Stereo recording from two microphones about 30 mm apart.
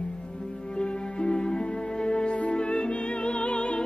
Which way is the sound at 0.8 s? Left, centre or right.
Left.